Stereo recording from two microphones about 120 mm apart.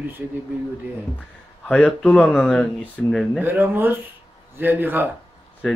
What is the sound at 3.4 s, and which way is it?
Speech, 15° right (ahead or behind).